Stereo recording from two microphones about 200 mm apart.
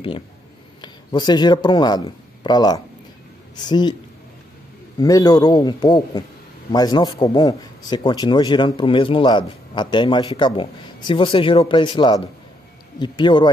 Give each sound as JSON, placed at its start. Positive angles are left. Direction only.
{"t": 0.7, "sound": "a man's voice", "side_deg": 20}
{"t": 4.9, "sound": "a man's voice", "side_deg": 20}